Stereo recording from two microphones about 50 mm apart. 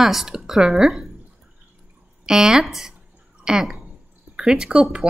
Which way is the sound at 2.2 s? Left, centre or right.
Centre.